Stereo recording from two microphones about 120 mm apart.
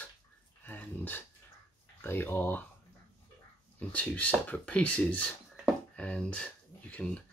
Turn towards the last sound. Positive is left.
turn(degrees=10)  # may be behind; listen again after turning